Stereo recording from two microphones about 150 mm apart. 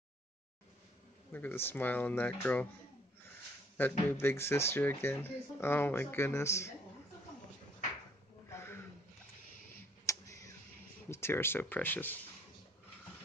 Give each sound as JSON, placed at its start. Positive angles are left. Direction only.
{"t": 1.3, "sound": "speech", "side_deg": 15}
{"t": 3.8, "sound": "speech", "side_deg": 15}
{"t": 8.5, "sound": "a sound", "side_deg": 15}
{"t": 10.1, "sound": "tick", "side_deg": 20}
{"t": 11.1, "sound": "speech", "side_deg": 15}